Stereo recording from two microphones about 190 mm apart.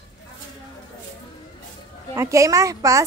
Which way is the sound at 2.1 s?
15° right (ahead or behind).